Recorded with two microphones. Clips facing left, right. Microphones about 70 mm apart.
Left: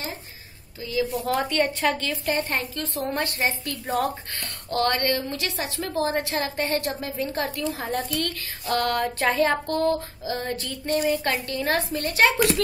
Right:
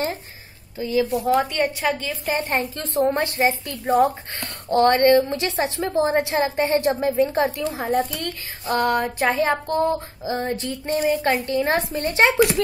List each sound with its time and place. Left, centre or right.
0.7 s a woman's voice: right
1.2 s a woman's voice: centre
2.4 s a woman's voice: right